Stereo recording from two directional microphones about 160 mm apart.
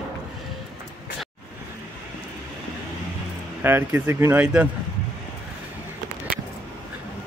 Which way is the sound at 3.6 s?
15° right (ahead or behind).